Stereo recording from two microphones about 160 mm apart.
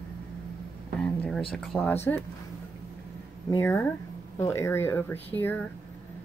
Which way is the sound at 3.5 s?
15° left (ahead or behind).